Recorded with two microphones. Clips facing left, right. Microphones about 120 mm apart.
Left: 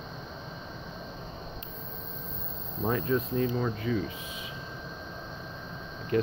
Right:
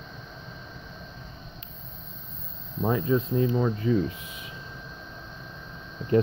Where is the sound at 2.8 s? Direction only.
15° right (ahead or behind).